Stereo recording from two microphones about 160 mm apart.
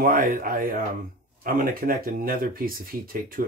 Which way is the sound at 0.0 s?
60° right (ahead or behind).